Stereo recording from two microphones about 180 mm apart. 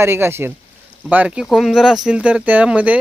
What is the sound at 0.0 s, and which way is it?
Speech, 15° right (ahead or behind).